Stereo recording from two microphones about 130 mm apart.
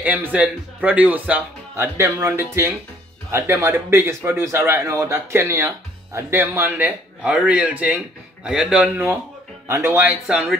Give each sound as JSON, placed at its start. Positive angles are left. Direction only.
{"t": 0.0, "sound": "speech", "side_deg": -15}
{"t": 2.0, "sound": "speech", "side_deg": -25}
{"t": 9.7, "sound": "speech", "side_deg": -25}
{"t": 9.9, "sound": "speech", "side_deg": -5}